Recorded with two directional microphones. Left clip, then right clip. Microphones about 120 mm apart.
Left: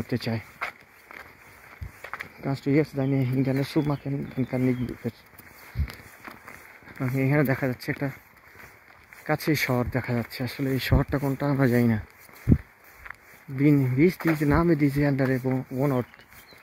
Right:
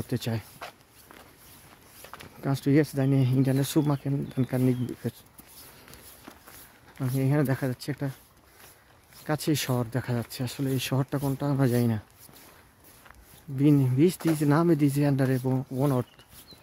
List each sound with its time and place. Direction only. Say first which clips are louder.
0.0 s speech: left 3 dB; 20° right (ahead or behind)
0.6 s dog: left 9 dB; 15° left (ahead or behind)
2.0 s a sound: left 8 dB; 20° left (ahead or behind)
2.4 s speech: even; 50° right (ahead or behind)
7.1 s speech: left 3 dB; 15° right (ahead or behind)
9.2 s speech: left 3 dB; 15° right (ahead or behind)
13.6 s speech: left 1 dB; 20° right (ahead or behind)